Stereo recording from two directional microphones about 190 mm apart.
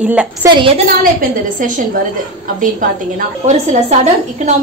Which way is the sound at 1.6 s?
45° right (ahead or behind).